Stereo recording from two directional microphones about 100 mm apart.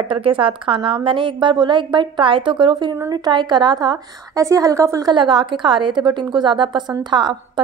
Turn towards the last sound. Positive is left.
turn(degrees=-50)  # may be behind; listen again after turning